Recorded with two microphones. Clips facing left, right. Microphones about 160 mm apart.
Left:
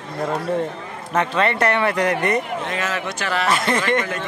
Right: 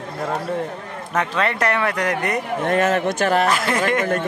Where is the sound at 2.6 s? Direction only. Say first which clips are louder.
Right 7 dB; 55° right (ahead or behind).